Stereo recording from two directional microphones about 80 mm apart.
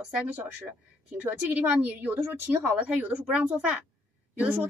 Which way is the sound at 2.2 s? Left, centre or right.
Centre.